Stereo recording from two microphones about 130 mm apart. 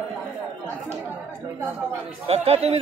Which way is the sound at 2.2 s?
50° right (ahead or behind).